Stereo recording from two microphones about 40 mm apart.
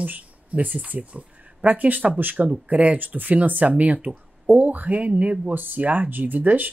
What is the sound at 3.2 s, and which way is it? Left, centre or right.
Speech, right.